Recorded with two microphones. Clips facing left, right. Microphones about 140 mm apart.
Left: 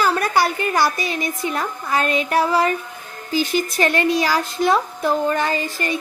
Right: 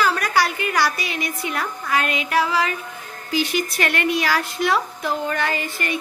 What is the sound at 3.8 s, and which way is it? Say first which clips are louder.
Speech: left 4 dB; 35° left (ahead or behind).